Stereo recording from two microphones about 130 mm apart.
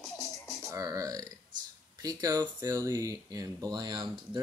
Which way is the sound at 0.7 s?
25° right (ahead or behind).